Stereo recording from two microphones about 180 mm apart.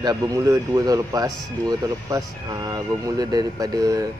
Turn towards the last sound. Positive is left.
turn(degrees=-20)  # may be behind; listen again after turning